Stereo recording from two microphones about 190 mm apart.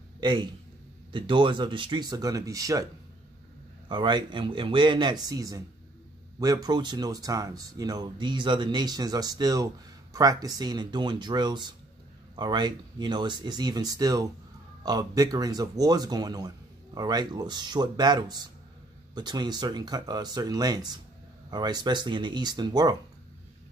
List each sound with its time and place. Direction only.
0.2 s a man's voice: 25° right (ahead or behind)
3.9 s speech: 25° right (ahead or behind)